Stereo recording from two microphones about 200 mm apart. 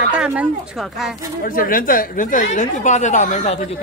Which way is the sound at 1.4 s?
45° left (ahead or behind).